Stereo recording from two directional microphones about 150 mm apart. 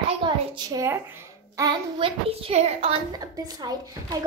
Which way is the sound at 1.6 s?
35° right (ahead or behind).